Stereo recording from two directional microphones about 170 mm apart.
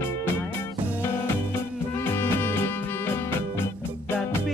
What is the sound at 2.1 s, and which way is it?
Music, 15° left (ahead or behind).